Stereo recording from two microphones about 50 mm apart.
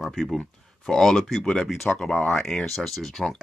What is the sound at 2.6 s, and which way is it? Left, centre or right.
Speech, centre.